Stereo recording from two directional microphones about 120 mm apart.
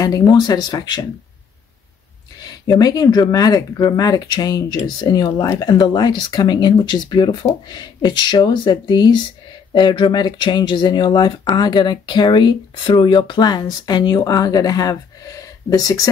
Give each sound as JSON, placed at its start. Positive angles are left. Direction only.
{"t": 0.0, "sound": "speech", "side_deg": 30}
{"t": 2.6, "sound": "speech", "side_deg": 30}